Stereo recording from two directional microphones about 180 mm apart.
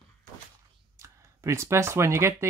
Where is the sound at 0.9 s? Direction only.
15° right (ahead or behind).